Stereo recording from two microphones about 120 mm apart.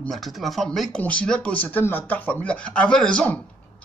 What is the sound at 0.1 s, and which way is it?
Speech, centre (ahead or behind).